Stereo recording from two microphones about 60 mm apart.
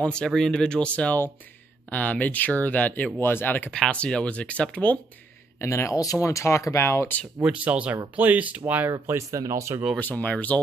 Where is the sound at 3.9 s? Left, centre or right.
Centre.